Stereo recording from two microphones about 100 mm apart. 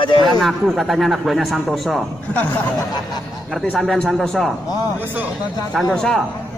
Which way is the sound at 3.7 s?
5° left (ahead or behind).